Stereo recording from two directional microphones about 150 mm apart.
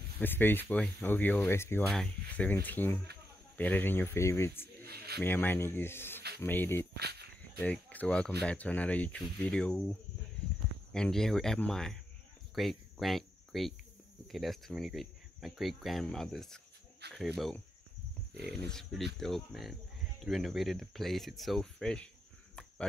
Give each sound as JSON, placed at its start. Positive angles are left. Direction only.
{"t": 0.2, "sound": "speech", "side_deg": 15}
{"t": 1.9, "sound": "speech", "side_deg": 5}
{"t": 4.8, "sound": "a sound", "side_deg": -90}
{"t": 5.2, "sound": "speech", "side_deg": 15}
{"t": 7.0, "sound": "a sound", "side_deg": -90}
{"t": 7.6, "sound": "speech", "side_deg": 10}
{"t": 17.0, "sound": "speech", "side_deg": -90}
{"t": 18.5, "sound": "speech", "side_deg": 5}